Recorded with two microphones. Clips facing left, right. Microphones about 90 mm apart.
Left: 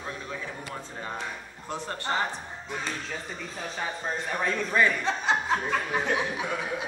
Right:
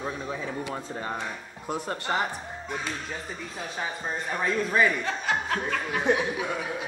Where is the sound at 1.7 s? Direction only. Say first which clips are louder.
Right 2 dB; 15° right (ahead or behind).